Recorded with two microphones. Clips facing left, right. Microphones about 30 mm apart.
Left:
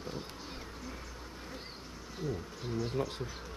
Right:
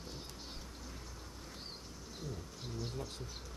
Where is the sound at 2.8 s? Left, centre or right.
Left.